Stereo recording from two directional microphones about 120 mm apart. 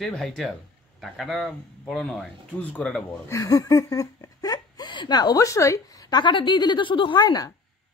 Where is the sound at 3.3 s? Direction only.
30° left (ahead or behind).